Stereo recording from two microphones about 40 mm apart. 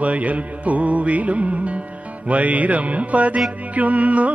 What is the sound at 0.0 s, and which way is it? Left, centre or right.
Music, right.